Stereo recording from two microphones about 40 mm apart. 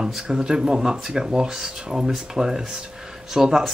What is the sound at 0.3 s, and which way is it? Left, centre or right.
Speech, centre.